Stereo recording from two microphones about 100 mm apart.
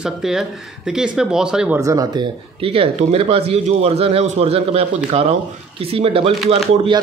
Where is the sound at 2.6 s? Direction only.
70° right (ahead or behind).